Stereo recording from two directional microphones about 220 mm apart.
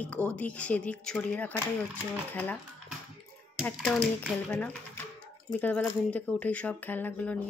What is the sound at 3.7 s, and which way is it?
Speech, centre (ahead or behind).